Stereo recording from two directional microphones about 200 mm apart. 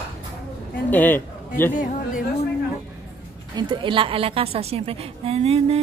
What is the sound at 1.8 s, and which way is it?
Speech, 40° left (ahead or behind).